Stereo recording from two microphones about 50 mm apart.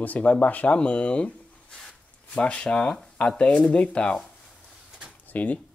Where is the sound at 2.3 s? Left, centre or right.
Left.